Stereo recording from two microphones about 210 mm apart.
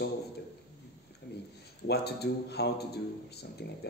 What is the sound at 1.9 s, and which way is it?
Speech, 50° left (ahead or behind).